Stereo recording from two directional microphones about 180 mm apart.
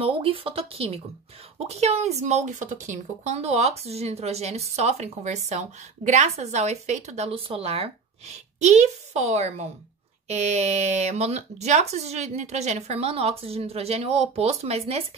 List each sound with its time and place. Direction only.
0.0 s speech: 30° right (ahead or behind)